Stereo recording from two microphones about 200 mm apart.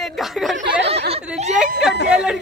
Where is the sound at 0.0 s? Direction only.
Centre (ahead or behind).